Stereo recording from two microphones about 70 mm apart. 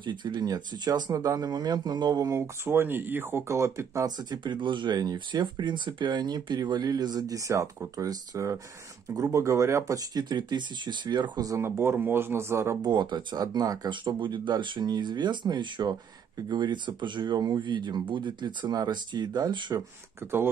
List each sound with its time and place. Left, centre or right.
0.0 s speech: right
1.1 s speech: right
2.2 s speech: right
4.2 s speech: right
9.9 s speech: right
11.5 s speech: right
12.8 s speech: right